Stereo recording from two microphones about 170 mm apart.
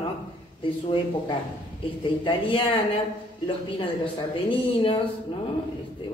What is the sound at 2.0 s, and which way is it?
Speech, 30° left (ahead or behind).